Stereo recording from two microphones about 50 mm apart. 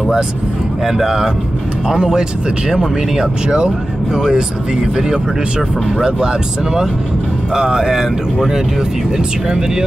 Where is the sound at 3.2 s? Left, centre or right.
Centre.